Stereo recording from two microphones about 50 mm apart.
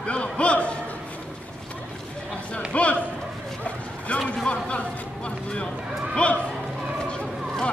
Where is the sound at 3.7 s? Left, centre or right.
Left.